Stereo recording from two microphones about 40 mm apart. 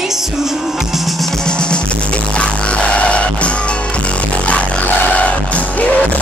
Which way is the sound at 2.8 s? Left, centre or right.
Left.